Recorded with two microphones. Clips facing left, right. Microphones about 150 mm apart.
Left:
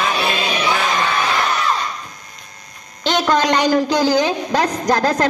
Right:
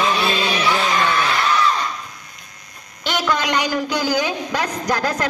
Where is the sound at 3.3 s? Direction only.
40° left (ahead or behind).